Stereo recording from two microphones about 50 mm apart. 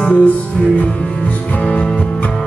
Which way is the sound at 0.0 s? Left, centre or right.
Left.